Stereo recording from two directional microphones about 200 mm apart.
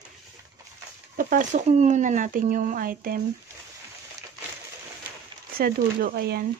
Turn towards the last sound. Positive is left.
turn(degrees=-50)  # may be behind; listen again after turning